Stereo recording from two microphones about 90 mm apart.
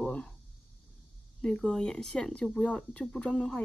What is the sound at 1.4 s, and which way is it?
Speech, 5° left (ahead or behind).